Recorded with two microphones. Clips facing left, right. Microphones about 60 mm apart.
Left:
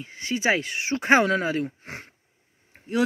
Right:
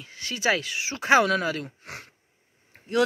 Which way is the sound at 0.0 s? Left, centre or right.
Left.